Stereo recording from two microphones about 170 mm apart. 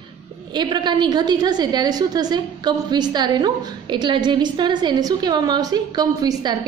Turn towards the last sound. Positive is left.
turn(degrees=-25)  # may be behind; listen again after turning